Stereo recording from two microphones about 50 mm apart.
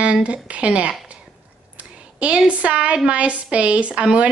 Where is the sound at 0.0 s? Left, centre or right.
Right.